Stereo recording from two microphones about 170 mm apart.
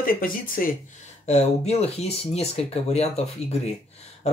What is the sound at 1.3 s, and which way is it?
Speech, 40° left (ahead or behind).